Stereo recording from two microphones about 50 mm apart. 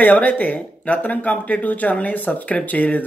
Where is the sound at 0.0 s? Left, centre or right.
Left.